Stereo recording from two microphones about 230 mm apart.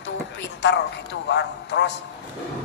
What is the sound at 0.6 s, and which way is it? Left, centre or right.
Speech, left.